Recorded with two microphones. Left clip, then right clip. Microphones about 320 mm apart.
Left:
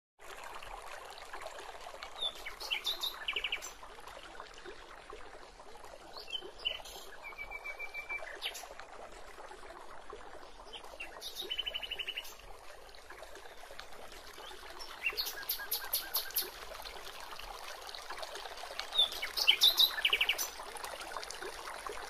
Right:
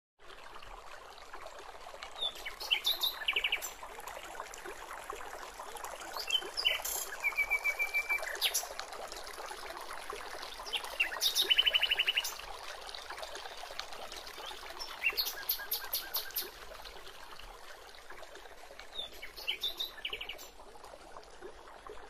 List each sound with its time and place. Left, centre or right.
2.1 s bird: centre
6.3 s trickle: right
6.7 s a sound: right
10.7 s bird: right
15.0 s bird: centre
18.8 s chirp: left